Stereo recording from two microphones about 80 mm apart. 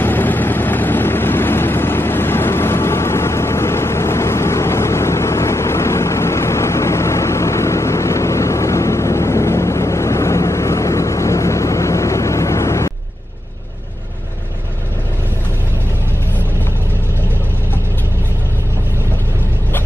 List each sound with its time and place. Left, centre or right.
0.0 s vehicle: left